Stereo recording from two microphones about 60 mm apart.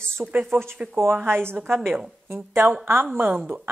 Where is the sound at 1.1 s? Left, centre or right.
Right.